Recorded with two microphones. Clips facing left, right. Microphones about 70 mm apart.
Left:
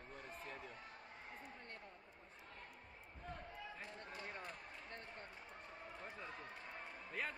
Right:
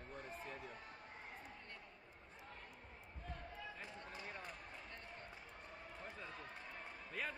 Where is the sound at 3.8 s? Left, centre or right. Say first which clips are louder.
Even; centre.